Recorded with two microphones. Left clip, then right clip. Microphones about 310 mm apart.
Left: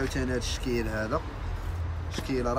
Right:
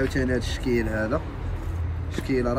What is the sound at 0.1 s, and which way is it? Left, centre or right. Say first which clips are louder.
Speech: right 5 dB; centre.